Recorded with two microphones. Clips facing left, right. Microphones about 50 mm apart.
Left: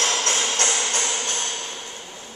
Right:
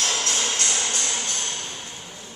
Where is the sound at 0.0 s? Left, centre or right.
Left.